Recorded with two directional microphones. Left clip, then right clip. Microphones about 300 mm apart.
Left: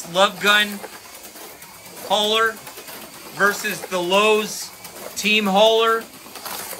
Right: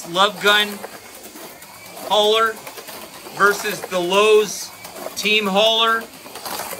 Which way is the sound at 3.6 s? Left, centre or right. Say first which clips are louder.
Right 1 dB; centre.